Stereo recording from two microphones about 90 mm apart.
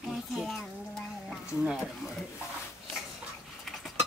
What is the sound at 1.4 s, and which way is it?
Speech, 10° right (ahead or behind).